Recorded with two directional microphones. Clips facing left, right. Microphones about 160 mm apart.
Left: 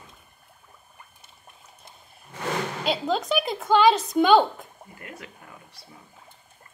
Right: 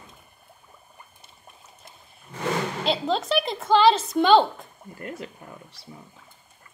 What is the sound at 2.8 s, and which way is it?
A woman's voice, centre (ahead or behind).